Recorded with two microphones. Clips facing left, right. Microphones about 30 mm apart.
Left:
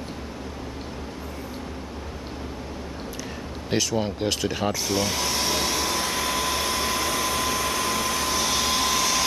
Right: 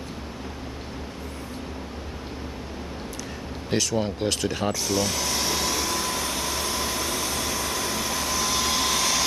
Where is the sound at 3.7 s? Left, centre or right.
Centre.